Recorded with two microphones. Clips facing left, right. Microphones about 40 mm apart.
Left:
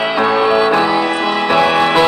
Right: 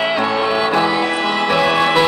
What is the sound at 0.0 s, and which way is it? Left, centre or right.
Music, centre.